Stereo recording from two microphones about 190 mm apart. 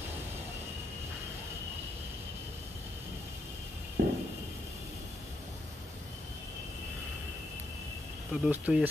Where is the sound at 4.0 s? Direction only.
55° right (ahead or behind).